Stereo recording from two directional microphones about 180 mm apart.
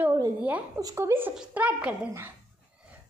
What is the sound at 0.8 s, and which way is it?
A woman's voice, 15° right (ahead or behind).